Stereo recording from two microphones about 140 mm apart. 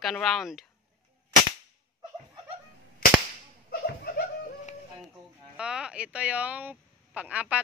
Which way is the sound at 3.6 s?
90° left.